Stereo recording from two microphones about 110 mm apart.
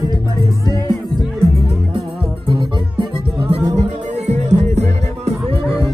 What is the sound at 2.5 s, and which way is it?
Music, 50° right (ahead or behind).